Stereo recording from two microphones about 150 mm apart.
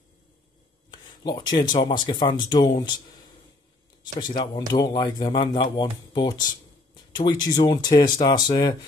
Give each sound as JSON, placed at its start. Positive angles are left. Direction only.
{"t": 0.9, "sound": "a man's voice", "side_deg": 30}
{"t": 4.0, "sound": "a man's voice", "side_deg": 30}